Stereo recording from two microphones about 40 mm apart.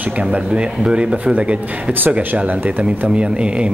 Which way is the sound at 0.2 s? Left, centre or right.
Right.